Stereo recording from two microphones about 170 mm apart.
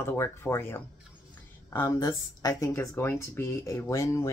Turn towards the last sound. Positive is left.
turn(degrees=15)  # may be behind; listen again after turning